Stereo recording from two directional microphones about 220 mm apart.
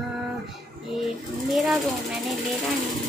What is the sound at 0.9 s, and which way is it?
Speech, centre (ahead or behind).